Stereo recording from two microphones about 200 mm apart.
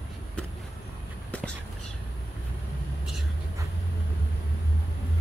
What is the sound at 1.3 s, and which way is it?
Whispering, 5° left (ahead or behind).